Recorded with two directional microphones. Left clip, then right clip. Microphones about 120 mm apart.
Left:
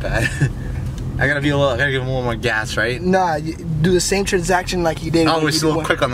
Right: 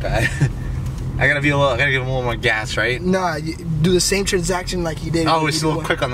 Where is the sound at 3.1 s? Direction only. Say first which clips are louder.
Left 3 dB; 5° right (ahead or behind).